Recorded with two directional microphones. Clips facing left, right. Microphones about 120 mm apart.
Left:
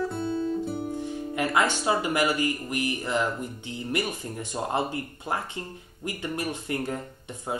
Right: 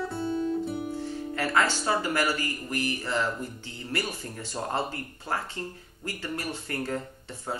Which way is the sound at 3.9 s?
15° left (ahead or behind).